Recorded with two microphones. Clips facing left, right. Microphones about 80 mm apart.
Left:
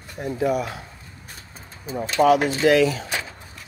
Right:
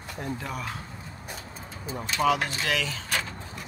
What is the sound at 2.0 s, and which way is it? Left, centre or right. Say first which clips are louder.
Speech: left 7 dB; left.